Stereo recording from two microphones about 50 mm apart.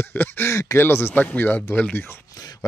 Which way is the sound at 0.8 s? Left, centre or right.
Left.